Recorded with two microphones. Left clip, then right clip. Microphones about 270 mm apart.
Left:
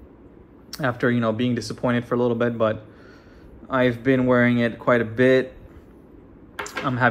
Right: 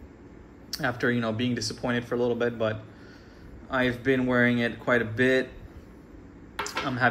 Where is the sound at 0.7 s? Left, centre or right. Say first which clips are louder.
Left 4 dB; centre.